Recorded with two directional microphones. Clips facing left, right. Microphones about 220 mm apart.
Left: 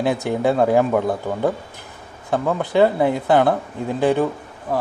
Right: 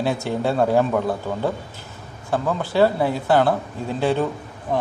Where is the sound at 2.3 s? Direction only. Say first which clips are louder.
Left 3 dB; 20° left (ahead or behind).